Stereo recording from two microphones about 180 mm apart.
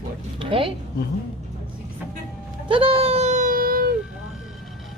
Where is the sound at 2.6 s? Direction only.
30° right (ahead or behind); by 3.9 s 55° right (ahead or behind).